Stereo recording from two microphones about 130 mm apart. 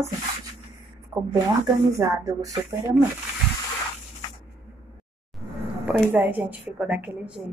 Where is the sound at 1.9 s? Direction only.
25° right (ahead or behind).